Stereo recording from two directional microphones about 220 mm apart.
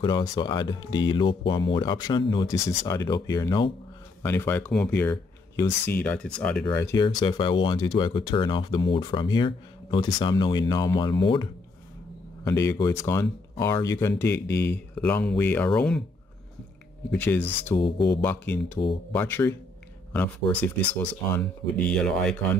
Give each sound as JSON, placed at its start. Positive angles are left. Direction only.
{"t": 0.0, "sound": "speech", "side_deg": 20}
{"t": 6.9, "sound": "speech", "side_deg": 15}
{"t": 12.4, "sound": "speech", "side_deg": 15}
{"t": 14.3, "sound": "speech", "side_deg": 50}
{"t": 15.0, "sound": "speech", "side_deg": 5}
{"t": 17.1, "sound": "speech", "side_deg": 10}
{"t": 17.7, "sound": "speech", "side_deg": 20}
{"t": 18.2, "sound": "speech", "side_deg": 10}